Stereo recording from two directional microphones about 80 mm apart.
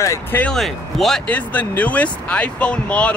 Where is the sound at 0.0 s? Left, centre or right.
Left.